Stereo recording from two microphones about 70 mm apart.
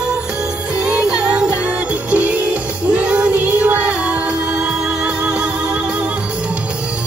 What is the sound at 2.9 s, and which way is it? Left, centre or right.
Child singing, centre.